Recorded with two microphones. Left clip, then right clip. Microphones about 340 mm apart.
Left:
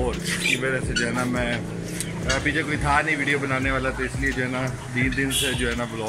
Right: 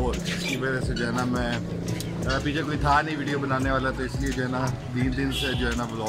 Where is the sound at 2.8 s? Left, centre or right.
Centre.